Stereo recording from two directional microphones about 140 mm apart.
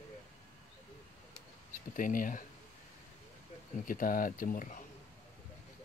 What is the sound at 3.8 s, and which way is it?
Speech, 85° left.